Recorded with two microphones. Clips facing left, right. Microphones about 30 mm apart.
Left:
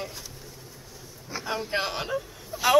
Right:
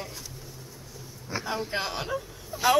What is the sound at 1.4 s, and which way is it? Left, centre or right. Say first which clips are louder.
Speech: left 3 dB; centre.